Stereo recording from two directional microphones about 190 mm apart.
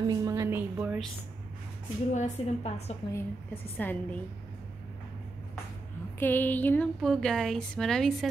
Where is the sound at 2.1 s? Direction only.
35° left (ahead or behind).